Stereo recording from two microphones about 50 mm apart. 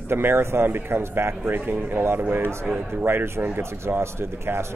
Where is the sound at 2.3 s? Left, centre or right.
Right.